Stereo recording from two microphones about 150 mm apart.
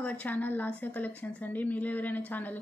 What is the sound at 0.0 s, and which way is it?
Speech, 10° left (ahead or behind).